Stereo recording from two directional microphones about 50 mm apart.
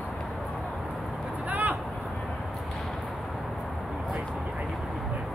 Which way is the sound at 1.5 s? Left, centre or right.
Right.